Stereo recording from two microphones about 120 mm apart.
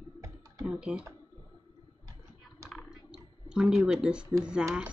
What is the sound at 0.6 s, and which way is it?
Speech, 10° right (ahead or behind).